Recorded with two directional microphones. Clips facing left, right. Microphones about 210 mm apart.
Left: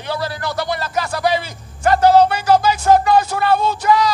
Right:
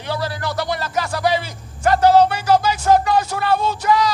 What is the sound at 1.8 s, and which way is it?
Speech, 55° left (ahead or behind).